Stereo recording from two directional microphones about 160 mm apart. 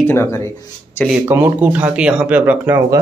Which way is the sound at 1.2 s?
15° right (ahead or behind).